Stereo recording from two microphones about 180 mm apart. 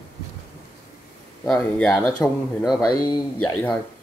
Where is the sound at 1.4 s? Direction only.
5° left (ahead or behind).